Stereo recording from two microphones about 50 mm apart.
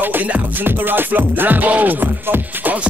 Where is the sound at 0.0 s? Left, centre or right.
Right.